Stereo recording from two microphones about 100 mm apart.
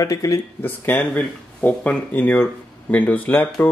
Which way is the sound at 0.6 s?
15° left (ahead or behind).